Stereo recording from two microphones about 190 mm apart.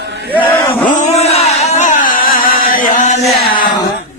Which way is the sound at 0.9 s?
40° left (ahead or behind).